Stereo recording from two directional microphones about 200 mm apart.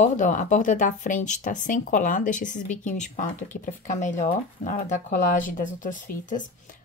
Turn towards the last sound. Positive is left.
turn(degrees=40)  # may be behind; listen again after turning